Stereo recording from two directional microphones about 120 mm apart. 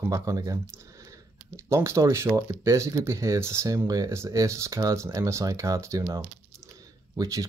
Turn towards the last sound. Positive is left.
turn(degrees=-30)  # may be behind; listen again after turning